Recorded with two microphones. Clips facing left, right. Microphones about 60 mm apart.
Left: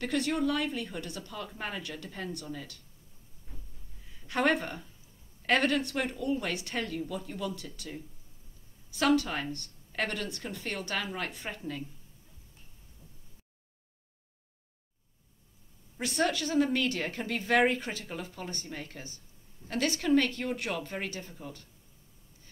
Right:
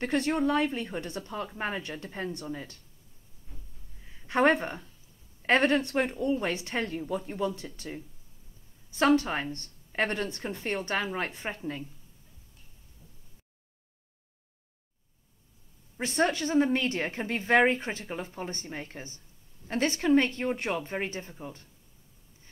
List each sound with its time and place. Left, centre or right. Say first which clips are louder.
0.0 s a woman's voice: right 3 dB; right
4.1 s a woman's voice: right 4 dB; right
16.0 s a woman's voice: right 3 dB; right